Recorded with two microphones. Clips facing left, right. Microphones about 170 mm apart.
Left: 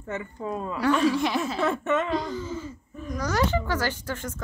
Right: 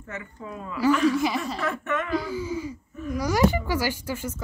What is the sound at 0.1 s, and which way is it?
Speech, 30° left (ahead or behind).